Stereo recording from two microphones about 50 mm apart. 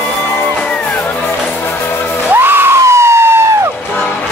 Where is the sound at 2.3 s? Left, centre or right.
Right.